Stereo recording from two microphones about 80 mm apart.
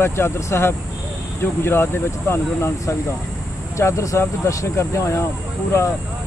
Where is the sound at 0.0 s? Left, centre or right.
Left.